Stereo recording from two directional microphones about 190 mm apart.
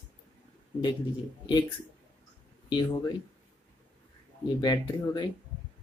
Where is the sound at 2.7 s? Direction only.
25° left (ahead or behind).